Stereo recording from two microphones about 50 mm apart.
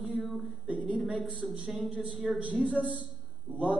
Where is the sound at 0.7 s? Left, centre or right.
Right.